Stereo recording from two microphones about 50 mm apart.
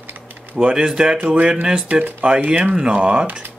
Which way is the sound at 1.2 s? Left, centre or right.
Right.